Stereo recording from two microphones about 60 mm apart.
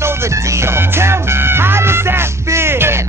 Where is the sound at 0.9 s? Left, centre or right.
Right.